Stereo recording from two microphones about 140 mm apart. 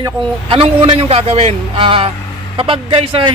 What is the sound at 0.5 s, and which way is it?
A man's voice, 40° right (ahead or behind).